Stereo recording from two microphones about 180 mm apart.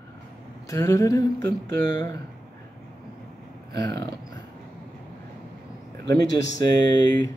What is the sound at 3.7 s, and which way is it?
Speech, 20° left (ahead or behind).